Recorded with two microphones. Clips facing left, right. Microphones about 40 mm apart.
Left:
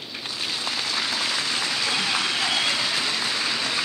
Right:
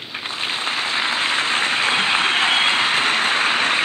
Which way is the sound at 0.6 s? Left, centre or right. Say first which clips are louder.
Right 6 dB; right.